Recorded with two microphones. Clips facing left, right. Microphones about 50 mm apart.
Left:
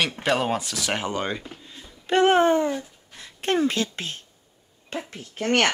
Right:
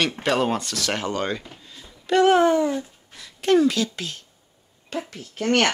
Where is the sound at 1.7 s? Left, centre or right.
Left.